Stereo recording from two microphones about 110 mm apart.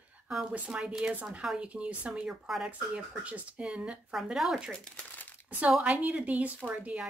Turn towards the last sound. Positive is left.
turn(degrees=-10)  # may be behind; listen again after turning